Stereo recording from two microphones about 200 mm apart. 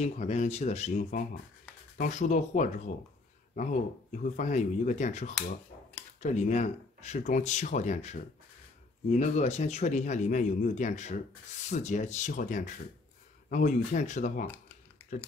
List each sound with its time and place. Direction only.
0.0 s speech: 35° left (ahead or behind)
15.0 s typing: 10° left (ahead or behind)